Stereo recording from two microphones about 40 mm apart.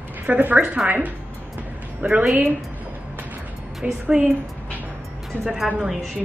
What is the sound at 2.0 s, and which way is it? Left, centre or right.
Speech, right.